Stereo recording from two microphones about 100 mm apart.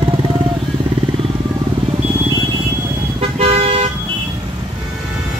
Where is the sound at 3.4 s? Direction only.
85° right.